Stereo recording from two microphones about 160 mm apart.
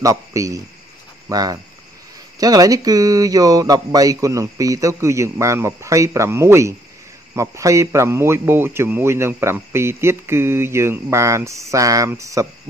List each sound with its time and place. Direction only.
0.0 s a man's voice: 20° right (ahead or behind)